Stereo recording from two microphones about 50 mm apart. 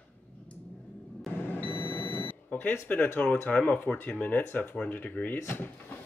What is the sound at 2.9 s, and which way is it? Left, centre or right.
Speech, left.